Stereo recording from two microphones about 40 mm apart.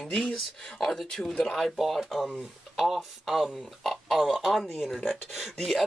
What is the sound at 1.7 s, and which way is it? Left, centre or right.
Speech, centre.